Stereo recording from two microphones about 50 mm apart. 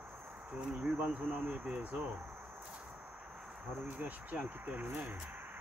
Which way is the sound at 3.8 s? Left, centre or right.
Right.